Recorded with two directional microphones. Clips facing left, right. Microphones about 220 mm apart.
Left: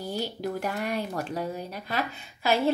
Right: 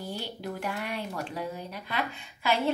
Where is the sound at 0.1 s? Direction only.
40° left (ahead or behind).